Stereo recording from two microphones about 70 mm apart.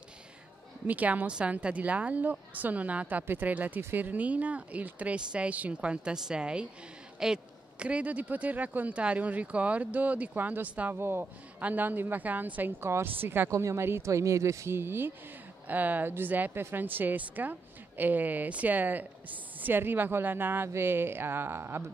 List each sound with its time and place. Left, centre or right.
0.8 s a woman's voice: right
11.6 s a woman's voice: right
13.5 s speech: right